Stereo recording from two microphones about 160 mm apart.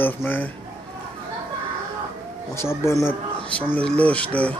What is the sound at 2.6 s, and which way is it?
Speech, 15° left (ahead or behind).